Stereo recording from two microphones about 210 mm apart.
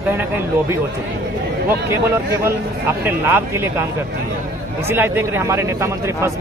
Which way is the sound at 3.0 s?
10° right (ahead or behind).